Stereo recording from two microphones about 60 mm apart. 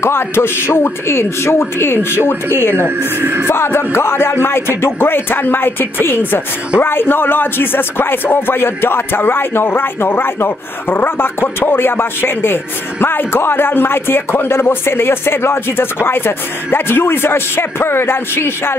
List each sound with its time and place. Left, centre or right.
0.0 s a man's voice: left
3.2 s music: right
3.4 s a man's voice: left